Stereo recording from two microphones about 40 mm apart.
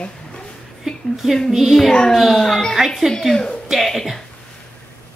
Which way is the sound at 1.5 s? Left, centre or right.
Centre.